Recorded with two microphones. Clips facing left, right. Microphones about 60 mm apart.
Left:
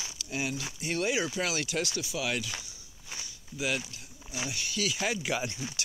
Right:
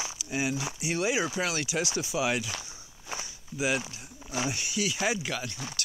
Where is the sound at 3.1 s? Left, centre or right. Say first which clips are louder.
Right 5 dB; right.